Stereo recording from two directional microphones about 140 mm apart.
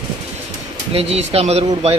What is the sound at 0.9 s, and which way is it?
Speech, 45° right (ahead or behind).